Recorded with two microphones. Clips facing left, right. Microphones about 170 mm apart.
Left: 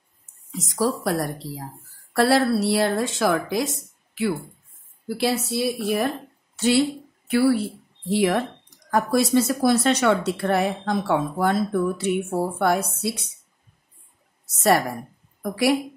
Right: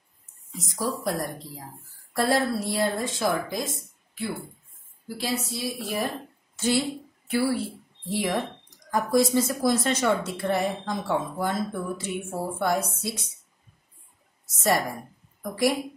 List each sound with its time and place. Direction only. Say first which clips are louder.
0.5 s a woman's voice: left 6 dB; 80° left; by 13.2 s 65° left (ahead or behind)
14.4 s a woman's voice: left 5 dB; 70° left (ahead or behind)